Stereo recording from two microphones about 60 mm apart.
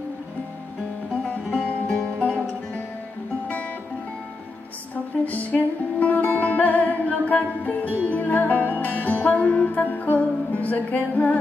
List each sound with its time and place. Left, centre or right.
1.3 s music: centre
5.2 s music: left